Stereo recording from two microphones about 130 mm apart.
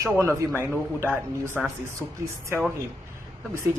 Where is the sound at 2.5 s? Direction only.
20° right (ahead or behind).